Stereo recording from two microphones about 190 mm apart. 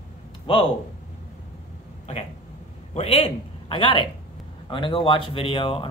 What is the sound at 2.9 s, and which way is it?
A man's voice, 35° left (ahead or behind).